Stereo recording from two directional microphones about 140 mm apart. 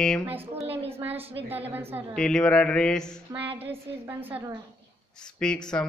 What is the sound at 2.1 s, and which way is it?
Speech, 5° left (ahead or behind).